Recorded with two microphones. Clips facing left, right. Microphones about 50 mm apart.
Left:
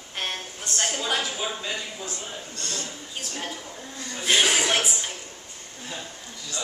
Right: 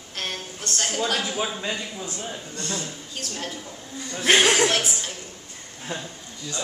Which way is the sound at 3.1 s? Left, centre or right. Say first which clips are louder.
Right 1 dB; centre.